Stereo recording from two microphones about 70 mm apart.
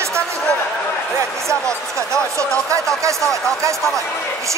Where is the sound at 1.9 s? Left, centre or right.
Right.